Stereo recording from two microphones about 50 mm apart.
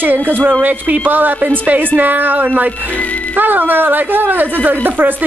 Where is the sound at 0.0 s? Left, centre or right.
Right.